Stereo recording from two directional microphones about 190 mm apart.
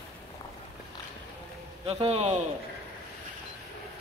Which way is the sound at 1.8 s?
30° right (ahead or behind).